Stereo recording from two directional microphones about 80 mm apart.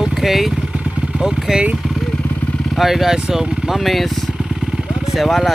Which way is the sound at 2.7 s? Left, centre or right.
Centre.